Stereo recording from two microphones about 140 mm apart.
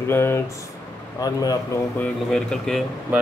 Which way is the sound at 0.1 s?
15° left (ahead or behind).